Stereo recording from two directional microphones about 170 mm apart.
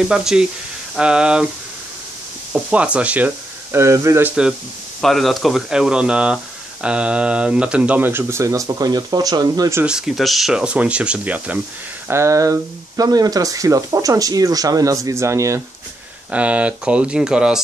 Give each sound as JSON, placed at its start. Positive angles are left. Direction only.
{"t": 0.1, "sound": "speech", "side_deg": -5}
{"t": 2.5, "sound": "speech", "side_deg": -5}
{"t": 5.0, "sound": "speech", "side_deg": 0}
{"t": 9.8, "sound": "speech", "side_deg": -5}